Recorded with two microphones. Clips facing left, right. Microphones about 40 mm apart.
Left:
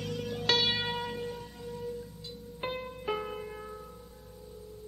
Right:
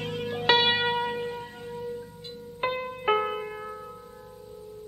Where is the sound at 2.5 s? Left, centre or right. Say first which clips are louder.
Right 7 dB; right.